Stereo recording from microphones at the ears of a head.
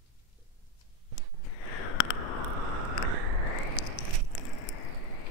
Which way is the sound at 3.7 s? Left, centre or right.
Left.